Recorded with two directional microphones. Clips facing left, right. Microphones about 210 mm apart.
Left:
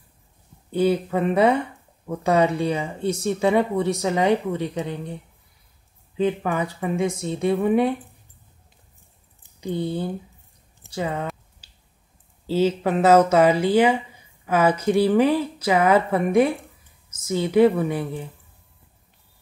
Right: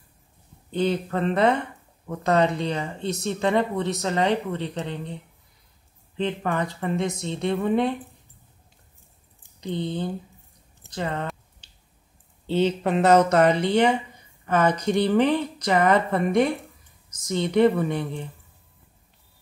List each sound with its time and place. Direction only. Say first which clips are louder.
0.7 s speech: left 4 dB; 10° left (ahead or behind)
9.6 s speech: left 2 dB; 10° left (ahead or behind)
10.8 s a sound: left 2 dB; 10° left (ahead or behind)
12.4 s speech: left 2 dB; 5° left (ahead or behind)